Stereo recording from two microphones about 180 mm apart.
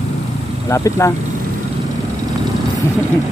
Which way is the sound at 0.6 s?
15° left (ahead or behind).